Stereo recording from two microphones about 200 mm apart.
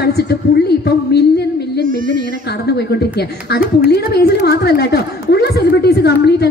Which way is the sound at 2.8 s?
55° left (ahead or behind).